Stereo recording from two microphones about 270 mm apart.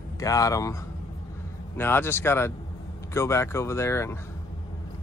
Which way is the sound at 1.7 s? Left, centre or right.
Centre.